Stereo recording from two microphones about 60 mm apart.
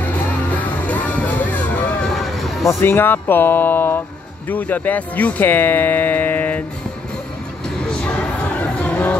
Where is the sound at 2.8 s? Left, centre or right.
Left.